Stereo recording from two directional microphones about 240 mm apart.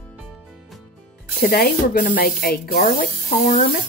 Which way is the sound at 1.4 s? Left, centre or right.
Left.